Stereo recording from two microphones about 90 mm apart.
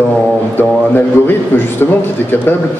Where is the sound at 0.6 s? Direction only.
20° left (ahead or behind).